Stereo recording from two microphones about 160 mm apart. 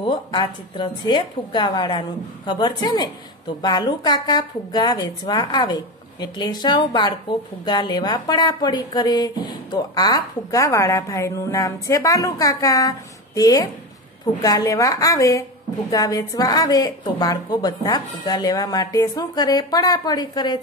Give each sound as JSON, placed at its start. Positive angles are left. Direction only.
{"t": 0.0, "sound": "a woman's voice", "side_deg": 30}